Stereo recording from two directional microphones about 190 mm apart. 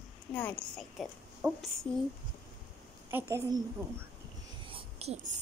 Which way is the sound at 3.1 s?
15° right (ahead or behind).